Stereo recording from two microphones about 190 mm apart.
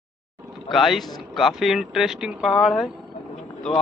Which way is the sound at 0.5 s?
Centre (ahead or behind).